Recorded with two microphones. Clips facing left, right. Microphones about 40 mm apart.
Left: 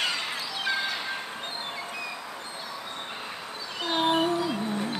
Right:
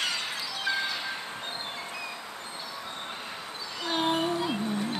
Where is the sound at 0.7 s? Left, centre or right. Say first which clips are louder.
Left 1 dB; left.